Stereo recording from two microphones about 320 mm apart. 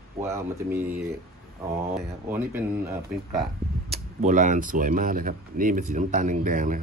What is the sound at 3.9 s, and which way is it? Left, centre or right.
Speech, right.